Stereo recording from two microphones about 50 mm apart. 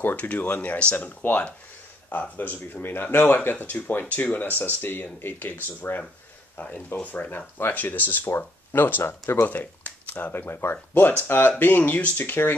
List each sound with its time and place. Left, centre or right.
0.1 s speech: left
3.4 s speech: left
9.5 s a sound: left
10.3 s speech: left
11.0 s speech: left